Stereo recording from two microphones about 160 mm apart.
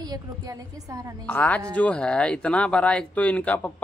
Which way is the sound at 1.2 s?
10° left (ahead or behind).